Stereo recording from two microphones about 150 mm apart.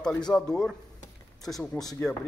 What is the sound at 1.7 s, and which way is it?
Speech, 25° left (ahead or behind).